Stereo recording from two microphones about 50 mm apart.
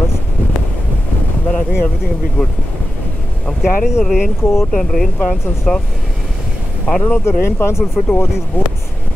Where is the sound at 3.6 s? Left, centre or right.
Centre.